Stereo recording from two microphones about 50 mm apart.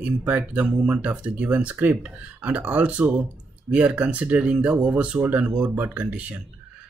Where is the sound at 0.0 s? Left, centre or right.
Right.